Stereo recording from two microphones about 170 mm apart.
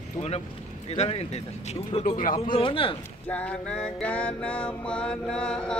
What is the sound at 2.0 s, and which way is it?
Speech, 50° left (ahead or behind).